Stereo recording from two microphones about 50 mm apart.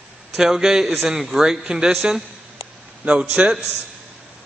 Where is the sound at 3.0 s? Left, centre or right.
Right.